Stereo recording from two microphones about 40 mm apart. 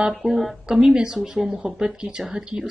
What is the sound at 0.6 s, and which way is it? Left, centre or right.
A woman's voice, centre.